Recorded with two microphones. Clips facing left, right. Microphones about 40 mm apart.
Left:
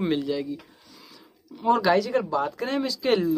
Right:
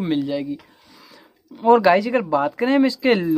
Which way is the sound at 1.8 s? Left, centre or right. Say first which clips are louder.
Right 5 dB; right.